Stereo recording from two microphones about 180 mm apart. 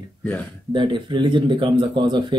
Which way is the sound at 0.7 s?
25° right (ahead or behind).